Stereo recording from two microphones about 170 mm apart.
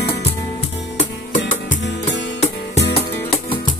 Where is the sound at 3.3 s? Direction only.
30° left (ahead or behind).